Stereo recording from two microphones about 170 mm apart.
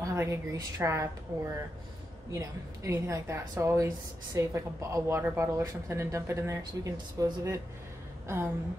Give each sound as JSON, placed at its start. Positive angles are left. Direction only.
{"t": 0.0, "sound": "a woman's voice", "side_deg": -15}